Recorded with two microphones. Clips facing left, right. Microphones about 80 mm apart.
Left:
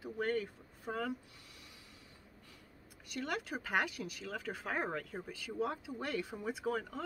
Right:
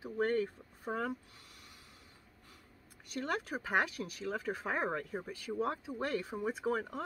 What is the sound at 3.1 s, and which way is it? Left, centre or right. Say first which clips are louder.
Speech: right 2 dB; right.